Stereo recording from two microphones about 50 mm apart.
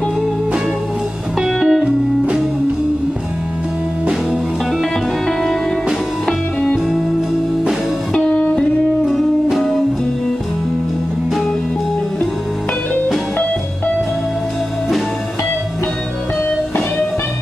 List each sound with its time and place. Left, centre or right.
1.4 s music: centre
8.1 s music: centre
9.0 s music: centre